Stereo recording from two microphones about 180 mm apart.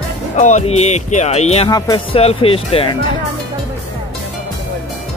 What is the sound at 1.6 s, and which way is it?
Speech, 20° left (ahead or behind).